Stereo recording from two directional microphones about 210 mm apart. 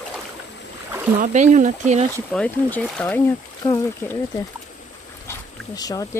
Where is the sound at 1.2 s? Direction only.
35° right (ahead or behind).